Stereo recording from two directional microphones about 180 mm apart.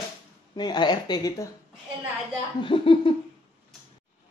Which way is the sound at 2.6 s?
30° left (ahead or behind).